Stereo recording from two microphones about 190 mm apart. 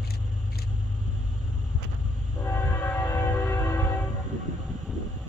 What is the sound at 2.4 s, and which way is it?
Train, 15° left (ahead or behind).